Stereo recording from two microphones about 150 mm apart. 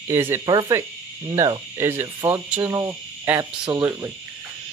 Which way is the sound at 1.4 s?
20° right (ahead or behind).